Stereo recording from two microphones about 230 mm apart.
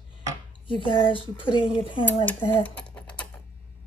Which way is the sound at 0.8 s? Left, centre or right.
Left.